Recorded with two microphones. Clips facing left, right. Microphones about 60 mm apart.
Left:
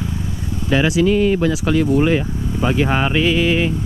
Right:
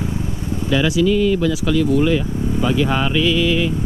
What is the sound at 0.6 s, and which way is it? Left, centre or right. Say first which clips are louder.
Speech: left 1 dB; left.